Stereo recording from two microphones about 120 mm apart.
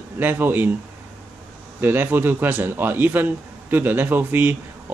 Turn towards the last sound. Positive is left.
turn(degrees=-15)  # may be behind; listen again after turning